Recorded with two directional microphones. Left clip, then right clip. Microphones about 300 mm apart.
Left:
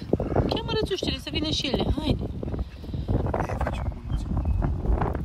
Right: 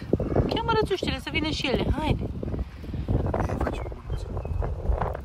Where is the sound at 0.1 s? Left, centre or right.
Centre.